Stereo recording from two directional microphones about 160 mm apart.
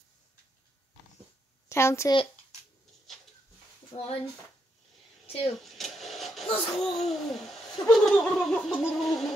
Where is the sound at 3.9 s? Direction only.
35° left (ahead or behind).